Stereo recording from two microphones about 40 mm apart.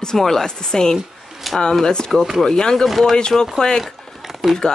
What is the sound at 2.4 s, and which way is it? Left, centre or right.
Speech, centre.